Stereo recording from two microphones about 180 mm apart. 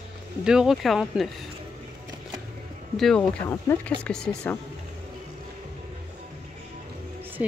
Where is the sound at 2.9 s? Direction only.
5° left (ahead or behind).